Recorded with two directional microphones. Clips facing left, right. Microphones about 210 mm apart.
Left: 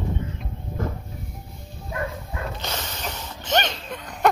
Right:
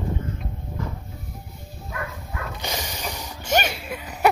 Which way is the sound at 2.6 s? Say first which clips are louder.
Right 1 dB; 10° right (ahead or behind).